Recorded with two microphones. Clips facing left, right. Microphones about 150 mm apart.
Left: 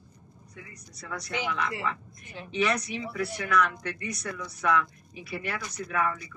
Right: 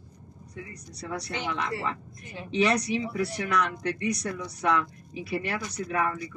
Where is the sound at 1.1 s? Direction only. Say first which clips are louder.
Even; 35° right (ahead or behind).